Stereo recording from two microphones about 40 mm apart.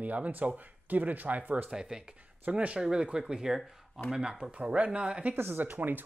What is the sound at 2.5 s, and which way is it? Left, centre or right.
Speech, right.